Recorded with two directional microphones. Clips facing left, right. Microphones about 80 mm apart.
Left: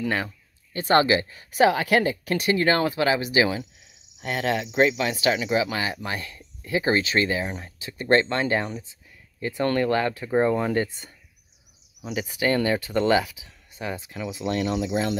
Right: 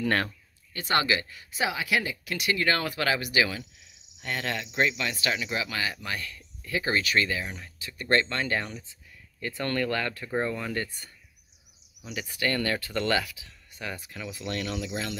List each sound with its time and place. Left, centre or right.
0.0 s speech: centre
0.7 s speech: left
1.5 s speech: left